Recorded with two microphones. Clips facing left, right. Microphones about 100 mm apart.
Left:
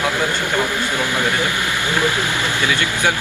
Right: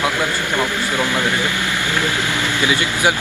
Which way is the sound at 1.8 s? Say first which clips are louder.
Left 3 dB; 20° left (ahead or behind).